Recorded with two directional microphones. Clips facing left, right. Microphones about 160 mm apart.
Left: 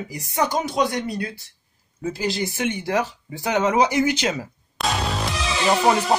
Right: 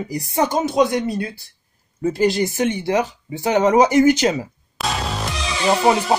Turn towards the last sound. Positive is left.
turn(degrees=0)  # may be behind; listen again after turning